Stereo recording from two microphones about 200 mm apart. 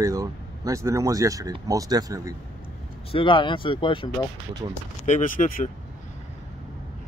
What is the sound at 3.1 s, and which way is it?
Speech, 25° left (ahead or behind).